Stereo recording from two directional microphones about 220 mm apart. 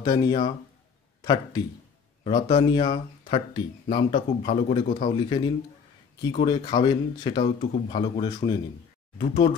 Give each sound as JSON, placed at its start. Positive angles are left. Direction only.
{"t": 0.0, "sound": "a man's voice", "side_deg": 20}